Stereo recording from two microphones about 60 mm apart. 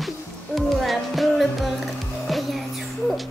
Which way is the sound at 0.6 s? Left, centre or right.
Centre.